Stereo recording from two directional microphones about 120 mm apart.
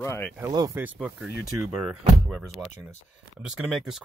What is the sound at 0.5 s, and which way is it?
Speech, 35° right (ahead or behind).